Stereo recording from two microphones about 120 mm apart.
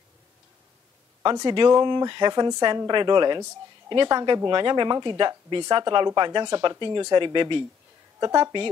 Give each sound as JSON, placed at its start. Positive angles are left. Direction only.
{"t": 1.2, "sound": "speech", "side_deg": -35}